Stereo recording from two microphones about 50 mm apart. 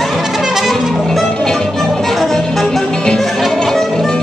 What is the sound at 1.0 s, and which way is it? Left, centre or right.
Music, centre.